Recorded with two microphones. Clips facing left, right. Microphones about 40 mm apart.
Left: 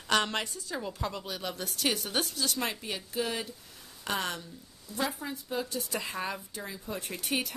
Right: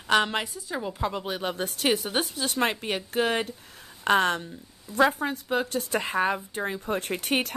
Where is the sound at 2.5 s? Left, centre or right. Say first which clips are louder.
Right 7 dB; right.